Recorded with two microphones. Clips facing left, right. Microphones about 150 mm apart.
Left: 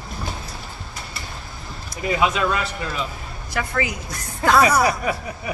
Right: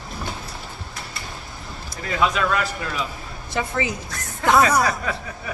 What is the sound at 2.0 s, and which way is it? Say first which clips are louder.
Speech: left 2 dB; 15° left (ahead or behind).